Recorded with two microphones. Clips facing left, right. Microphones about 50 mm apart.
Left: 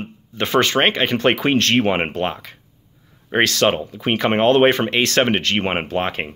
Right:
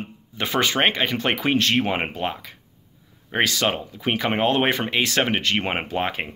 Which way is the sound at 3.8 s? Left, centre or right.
Left.